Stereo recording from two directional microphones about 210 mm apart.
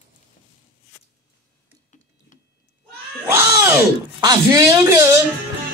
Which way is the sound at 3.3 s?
10° right (ahead or behind).